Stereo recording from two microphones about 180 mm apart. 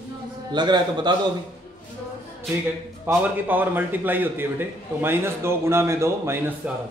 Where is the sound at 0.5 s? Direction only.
25° right (ahead or behind).